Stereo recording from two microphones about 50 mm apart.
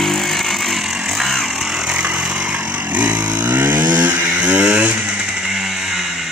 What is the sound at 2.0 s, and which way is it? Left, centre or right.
Vehicle, right.